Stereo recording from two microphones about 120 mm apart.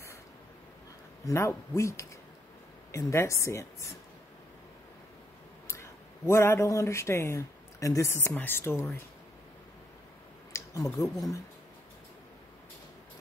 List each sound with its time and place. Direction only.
1.2 s speech: 25° left (ahead or behind)
5.7 s speech: 20° left (ahead or behind)
10.5 s speech: 30° left (ahead or behind)